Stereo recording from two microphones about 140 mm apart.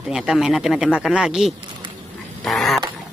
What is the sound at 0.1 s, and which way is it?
Speech, 5° right (ahead or behind).